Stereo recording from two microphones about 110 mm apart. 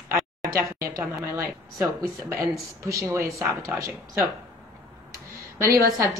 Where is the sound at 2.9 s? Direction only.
30° right (ahead or behind).